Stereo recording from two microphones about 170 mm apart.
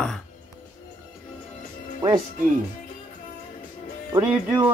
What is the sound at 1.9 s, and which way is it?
Music, 20° right (ahead or behind).